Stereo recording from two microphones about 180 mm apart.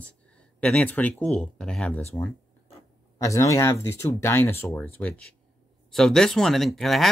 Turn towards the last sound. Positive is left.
turn(degrees=0)  # may be behind; listen again after turning